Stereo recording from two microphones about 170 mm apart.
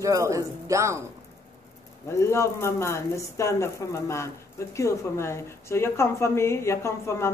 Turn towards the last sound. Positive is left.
turn(degrees=15)  # may be behind; listen again after turning